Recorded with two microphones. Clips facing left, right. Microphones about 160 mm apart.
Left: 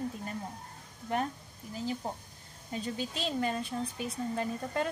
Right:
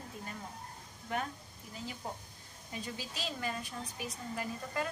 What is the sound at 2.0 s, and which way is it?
Speech, 30° left (ahead or behind).